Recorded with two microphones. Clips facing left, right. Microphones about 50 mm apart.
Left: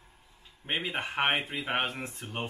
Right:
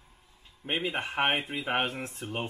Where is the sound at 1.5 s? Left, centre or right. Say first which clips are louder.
Right 1 dB; centre.